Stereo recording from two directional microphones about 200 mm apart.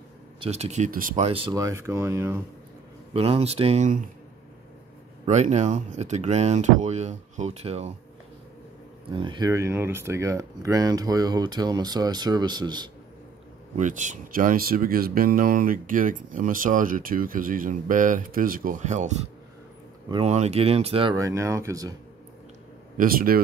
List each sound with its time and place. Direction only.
0.4 s speech: 30° right (ahead or behind); by 2.4 s 15° right (ahead or behind)
3.1 s speech: 30° right (ahead or behind)
5.2 s speech: 35° right (ahead or behind)
9.1 s speech: 25° right (ahead or behind)
13.7 s speech: 40° right (ahead or behind)
21.1 s speech: 15° right (ahead or behind)
22.9 s speech: 45° right (ahead or behind)